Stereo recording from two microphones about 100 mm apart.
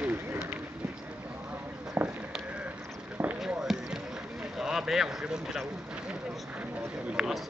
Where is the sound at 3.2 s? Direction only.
20° right (ahead or behind).